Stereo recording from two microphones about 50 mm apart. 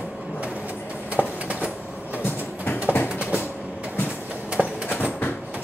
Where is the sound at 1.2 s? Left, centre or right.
Right.